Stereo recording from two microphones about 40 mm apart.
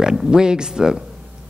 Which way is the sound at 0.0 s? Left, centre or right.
Centre.